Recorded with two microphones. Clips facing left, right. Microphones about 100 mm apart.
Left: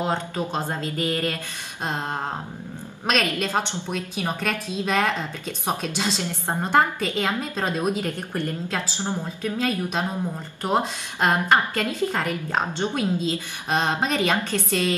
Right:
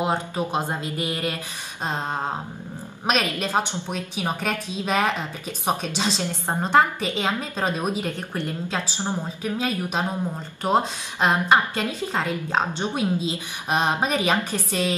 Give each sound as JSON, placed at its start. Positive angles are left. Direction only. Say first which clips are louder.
{"t": 0.0, "sound": "a woman's voice", "louder": "right 1 dB", "side_deg": -10}
{"t": 3.1, "sound": "a woman's voice", "louder": "even", "side_deg": -15}
{"t": 11.2, "sound": "a woman's voice", "louder": "right 1 dB", "side_deg": -20}